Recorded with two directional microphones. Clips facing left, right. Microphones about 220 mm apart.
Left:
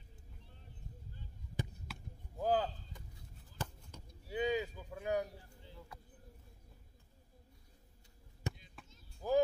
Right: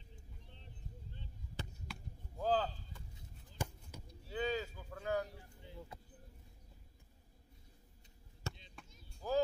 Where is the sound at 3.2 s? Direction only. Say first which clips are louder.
Right 2 dB; 10° right (ahead or behind).